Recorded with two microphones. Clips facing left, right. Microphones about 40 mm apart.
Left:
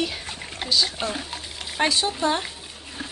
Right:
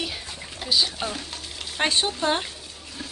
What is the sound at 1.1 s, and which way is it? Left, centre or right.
Speech, centre.